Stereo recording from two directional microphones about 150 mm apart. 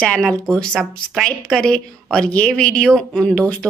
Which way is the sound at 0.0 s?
5° left (ahead or behind).